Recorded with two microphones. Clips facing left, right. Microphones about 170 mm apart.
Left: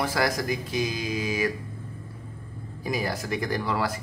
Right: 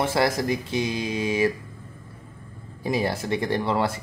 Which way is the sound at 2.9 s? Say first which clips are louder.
Right 4 dB; 25° right (ahead or behind).